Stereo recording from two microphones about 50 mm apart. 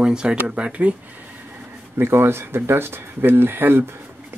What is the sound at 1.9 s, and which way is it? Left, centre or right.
Speech, right.